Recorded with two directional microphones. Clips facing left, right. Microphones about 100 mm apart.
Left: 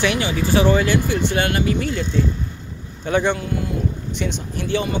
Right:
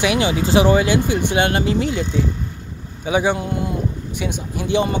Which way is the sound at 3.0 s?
10° right (ahead or behind).